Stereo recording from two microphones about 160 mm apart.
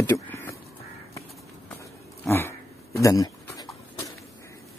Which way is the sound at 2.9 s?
20° left (ahead or behind).